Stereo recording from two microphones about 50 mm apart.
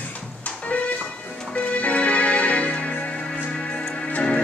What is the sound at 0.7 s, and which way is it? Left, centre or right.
Music, left.